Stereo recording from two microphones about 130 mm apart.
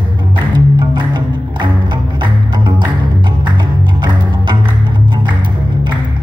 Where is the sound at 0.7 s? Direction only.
35° right (ahead or behind).